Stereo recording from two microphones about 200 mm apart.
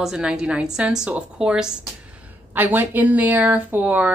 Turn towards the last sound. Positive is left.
turn(degrees=-5)  # may be behind; listen again after turning